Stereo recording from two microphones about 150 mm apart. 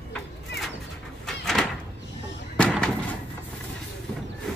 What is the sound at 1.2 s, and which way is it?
Door, centre (ahead or behind).